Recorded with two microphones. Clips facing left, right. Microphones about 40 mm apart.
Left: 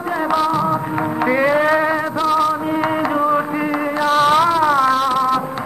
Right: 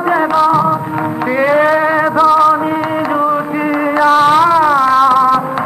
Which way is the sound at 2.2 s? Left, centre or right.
Right.